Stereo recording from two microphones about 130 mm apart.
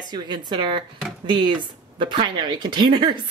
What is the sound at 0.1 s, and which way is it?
Speech, 35° right (ahead or behind).